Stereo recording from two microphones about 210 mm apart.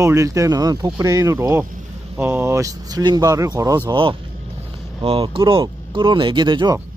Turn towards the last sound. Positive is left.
turn(degrees=-20)  # may be behind; listen again after turning